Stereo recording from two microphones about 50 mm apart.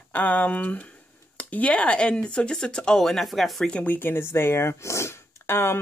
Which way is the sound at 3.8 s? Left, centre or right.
Left.